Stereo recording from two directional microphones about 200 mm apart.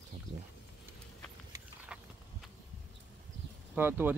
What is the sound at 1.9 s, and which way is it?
Horse, 5° right (ahead or behind).